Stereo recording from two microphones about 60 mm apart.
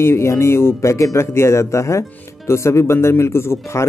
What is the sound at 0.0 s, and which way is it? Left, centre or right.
Speech, left.